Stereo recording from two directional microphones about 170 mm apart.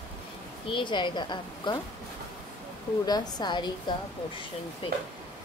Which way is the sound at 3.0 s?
25° left (ahead or behind).